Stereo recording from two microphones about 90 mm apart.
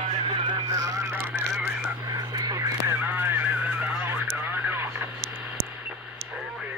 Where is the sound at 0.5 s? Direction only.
40° right (ahead or behind).